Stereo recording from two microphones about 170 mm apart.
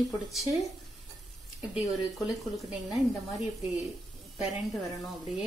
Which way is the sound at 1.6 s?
10° right (ahead or behind).